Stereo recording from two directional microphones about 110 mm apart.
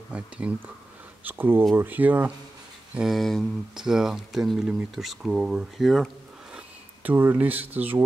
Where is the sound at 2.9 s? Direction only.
5° right (ahead or behind).